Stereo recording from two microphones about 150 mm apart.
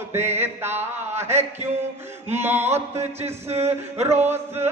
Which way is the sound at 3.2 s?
45° right (ahead or behind).